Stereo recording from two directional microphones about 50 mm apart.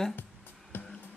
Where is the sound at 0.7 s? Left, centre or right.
Left.